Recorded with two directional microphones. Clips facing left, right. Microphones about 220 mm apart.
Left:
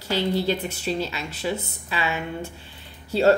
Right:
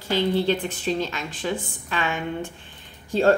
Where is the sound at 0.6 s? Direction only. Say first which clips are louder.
Right 2 dB; 40° left (ahead or behind).